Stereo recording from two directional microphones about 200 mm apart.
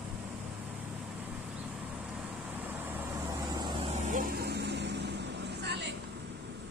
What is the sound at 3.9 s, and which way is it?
Vehicle, 40° right (ahead or behind).